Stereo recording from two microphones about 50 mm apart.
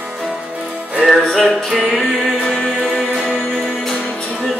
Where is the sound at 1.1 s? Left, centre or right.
Centre.